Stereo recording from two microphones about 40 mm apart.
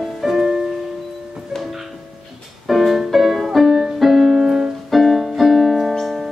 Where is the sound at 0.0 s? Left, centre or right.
Centre.